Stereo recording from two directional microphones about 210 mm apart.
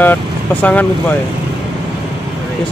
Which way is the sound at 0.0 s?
10° left (ahead or behind).